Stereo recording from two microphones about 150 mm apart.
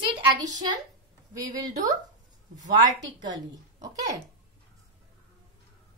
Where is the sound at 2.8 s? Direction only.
30° right (ahead or behind).